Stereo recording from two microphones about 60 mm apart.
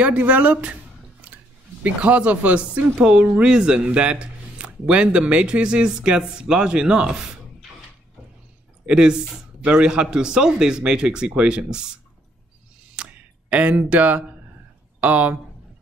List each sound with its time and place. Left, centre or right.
0.0 s speech: right
1.8 s speech: right
8.8 s speech: centre
12.9 s a sound: centre
15.0 s speech: right